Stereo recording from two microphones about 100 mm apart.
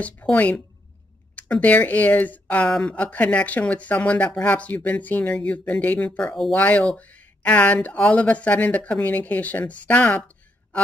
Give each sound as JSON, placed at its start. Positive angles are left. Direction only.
{"t": 0.0, "sound": "speech", "side_deg": 15}